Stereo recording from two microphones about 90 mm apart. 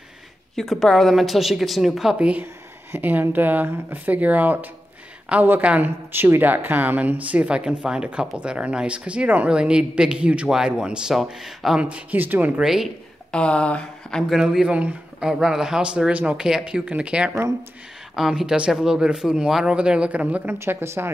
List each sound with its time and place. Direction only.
0.6 s a woman's voice: 5° left (ahead or behind); by 2.4 s 15° right (ahead or behind)
2.4 s speech: 25° right (ahead or behind)
12.6 s a woman's voice: 5° right (ahead or behind)
13.3 s speech: 10° left (ahead or behind)
14.3 s speech: 5° right (ahead or behind)
20.5 s speech: 30° right (ahead or behind)